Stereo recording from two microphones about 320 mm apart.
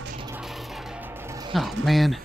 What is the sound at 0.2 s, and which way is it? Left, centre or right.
Music, centre.